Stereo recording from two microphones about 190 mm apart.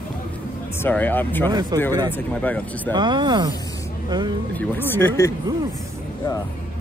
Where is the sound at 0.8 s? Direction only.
10° left (ahead or behind).